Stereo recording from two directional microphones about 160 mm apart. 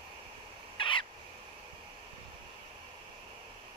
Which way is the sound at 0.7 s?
30° left (ahead or behind).